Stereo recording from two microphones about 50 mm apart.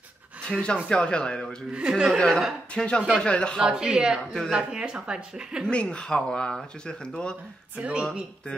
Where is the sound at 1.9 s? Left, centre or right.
Centre.